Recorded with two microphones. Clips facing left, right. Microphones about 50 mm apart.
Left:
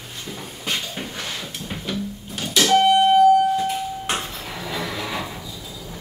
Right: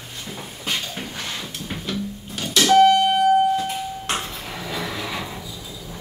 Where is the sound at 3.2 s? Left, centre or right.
Right.